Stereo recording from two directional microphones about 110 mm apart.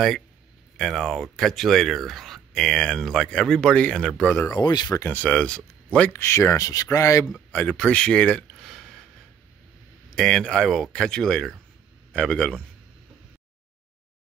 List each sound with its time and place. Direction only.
0.7 s speech: 5° left (ahead or behind)
4.4 s speech: 40° left (ahead or behind)
4.9 s speech: 20° left (ahead or behind)
6.1 s speech: 25° left (ahead or behind)
7.5 s speech: 15° left (ahead or behind)
8.5 s a sound: centre (ahead or behind)
10.1 s a man's voice: 10° left (ahead or behind)